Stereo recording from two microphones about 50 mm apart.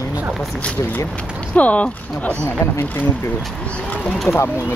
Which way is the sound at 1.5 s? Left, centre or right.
Left.